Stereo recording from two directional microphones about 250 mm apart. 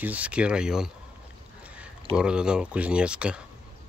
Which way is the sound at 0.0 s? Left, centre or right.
Centre.